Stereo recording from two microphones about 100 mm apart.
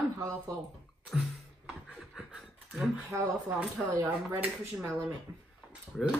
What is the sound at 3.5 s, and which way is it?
Speech, 15° right (ahead or behind).